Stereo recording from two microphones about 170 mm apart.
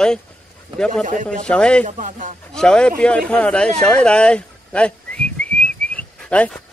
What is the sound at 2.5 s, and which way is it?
Speech, 5° left (ahead or behind).